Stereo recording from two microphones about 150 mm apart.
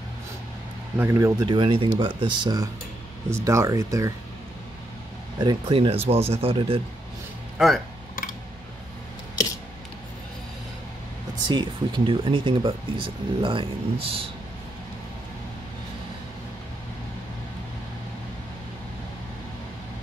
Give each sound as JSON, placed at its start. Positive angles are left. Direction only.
{"t": 0.9, "sound": "speech", "side_deg": -15}
{"t": 1.4, "sound": "speech", "side_deg": -30}
{"t": 5.4, "sound": "speech", "side_deg": -30}
{"t": 7.5, "sound": "speech", "side_deg": 0}
{"t": 11.4, "sound": "speech", "side_deg": -30}